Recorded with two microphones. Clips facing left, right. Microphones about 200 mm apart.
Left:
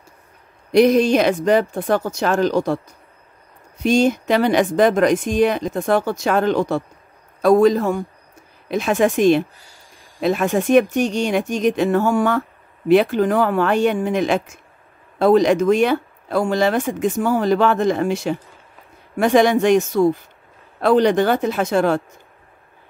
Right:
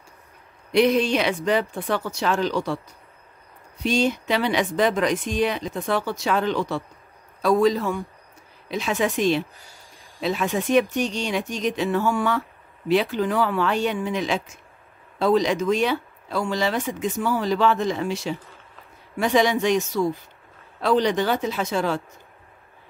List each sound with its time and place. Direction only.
0.7 s speech: 45° left (ahead or behind)
3.8 s speech: 45° left (ahead or behind)